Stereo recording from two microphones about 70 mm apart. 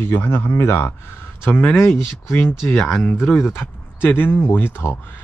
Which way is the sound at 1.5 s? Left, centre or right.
Centre.